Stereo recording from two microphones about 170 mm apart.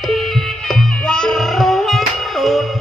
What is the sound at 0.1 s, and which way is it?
Music, centre (ahead or behind).